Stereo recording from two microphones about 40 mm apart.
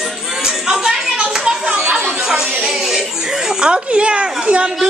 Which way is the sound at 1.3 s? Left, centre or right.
Centre.